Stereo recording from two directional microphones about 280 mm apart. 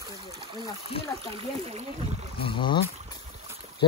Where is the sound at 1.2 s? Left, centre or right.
Right.